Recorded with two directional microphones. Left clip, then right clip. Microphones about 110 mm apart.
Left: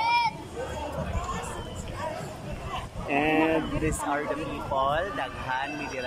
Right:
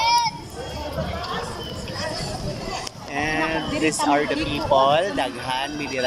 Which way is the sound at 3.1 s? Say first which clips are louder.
Even; 25° left (ahead or behind).